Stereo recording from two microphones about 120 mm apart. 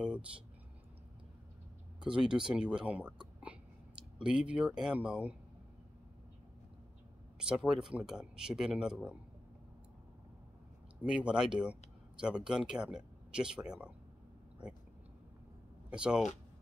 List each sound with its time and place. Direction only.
2.0 s speech: 5° right (ahead or behind)
4.3 s speech: 5° right (ahead or behind)
7.3 s speech: 5° right (ahead or behind)
11.0 s speech: 10° right (ahead or behind)
15.9 s speech: 5° right (ahead or behind)